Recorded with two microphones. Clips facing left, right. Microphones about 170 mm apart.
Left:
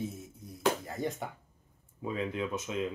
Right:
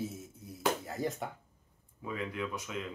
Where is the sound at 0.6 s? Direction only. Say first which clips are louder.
Left 2 dB; centre (ahead or behind).